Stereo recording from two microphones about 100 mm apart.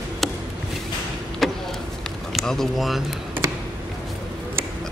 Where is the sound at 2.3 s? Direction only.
5° left (ahead or behind).